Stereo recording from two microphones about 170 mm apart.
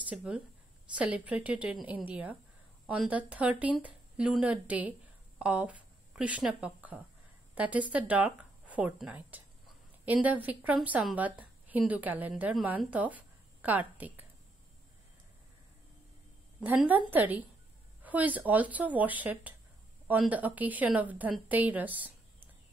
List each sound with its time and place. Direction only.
0.9 s a woman's voice: 5° right (ahead or behind)
16.6 s a woman's voice: 10° right (ahead or behind)